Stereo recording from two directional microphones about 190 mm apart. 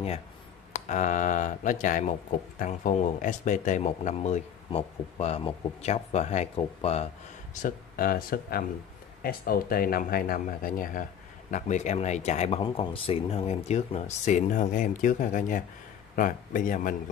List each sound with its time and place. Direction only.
0.7 s speech: 40° left (ahead or behind)
7.6 s speech: 50° left (ahead or behind)